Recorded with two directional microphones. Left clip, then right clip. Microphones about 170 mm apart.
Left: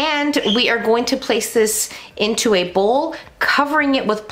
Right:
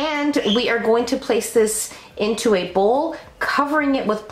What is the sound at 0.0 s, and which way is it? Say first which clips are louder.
A woman's voice: left 3 dB; 30° left (ahead or behind).